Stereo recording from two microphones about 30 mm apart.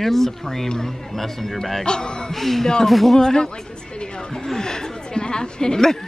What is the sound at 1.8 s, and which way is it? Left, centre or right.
Speech, left.